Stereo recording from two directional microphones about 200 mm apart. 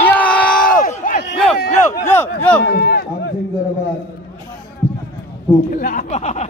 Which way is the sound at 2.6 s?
50° left (ahead or behind).